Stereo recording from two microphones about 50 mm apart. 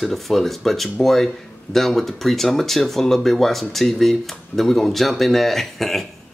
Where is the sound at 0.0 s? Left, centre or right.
Centre.